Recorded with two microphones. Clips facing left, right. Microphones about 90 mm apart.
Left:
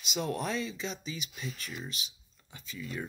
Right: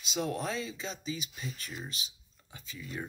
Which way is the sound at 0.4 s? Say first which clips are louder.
Left 2 dB; 25° right (ahead or behind).